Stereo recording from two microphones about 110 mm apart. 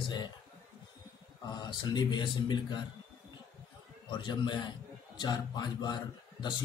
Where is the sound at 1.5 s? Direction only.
40° left (ahead or behind).